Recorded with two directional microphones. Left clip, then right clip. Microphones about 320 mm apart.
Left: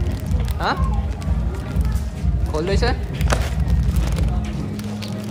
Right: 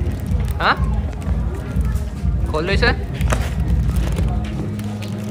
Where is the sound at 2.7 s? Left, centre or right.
Centre.